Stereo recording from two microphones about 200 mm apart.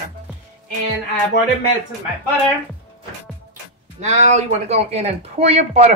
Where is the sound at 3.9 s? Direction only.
35° right (ahead or behind).